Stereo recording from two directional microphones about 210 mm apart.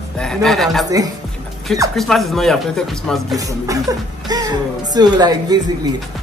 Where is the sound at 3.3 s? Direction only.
15° right (ahead or behind).